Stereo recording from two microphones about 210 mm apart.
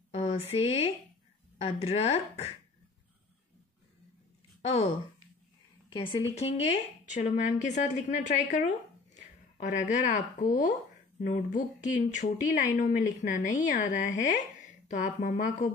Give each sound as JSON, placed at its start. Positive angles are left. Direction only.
{"t": 0.1, "sound": "a sound", "side_deg": 30}
{"t": 1.6, "sound": "speech", "side_deg": 30}
{"t": 4.6, "sound": "speech", "side_deg": 30}
{"t": 5.9, "sound": "a woman's voice", "side_deg": 25}